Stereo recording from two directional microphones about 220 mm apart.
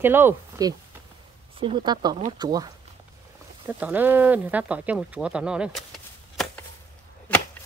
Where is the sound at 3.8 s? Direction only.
10° right (ahead or behind).